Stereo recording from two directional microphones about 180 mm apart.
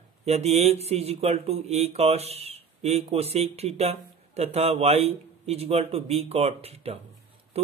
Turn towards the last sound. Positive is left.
turn(degrees=-35)  # may be behind; listen again after turning